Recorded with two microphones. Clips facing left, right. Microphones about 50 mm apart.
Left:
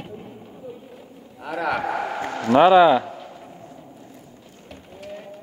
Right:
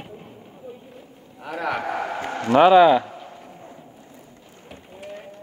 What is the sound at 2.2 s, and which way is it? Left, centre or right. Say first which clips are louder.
Speech: left 1 dB; right.